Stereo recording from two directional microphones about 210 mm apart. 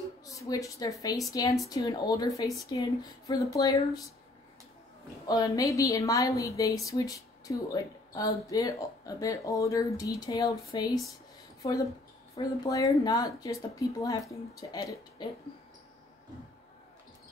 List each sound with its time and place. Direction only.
0.2 s a woman's voice: 15° left (ahead or behind)
5.2 s a woman's voice: 20° left (ahead or behind)
12.4 s a woman's voice: 15° left (ahead or behind)